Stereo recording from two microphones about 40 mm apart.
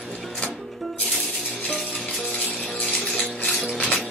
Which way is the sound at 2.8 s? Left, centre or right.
Centre.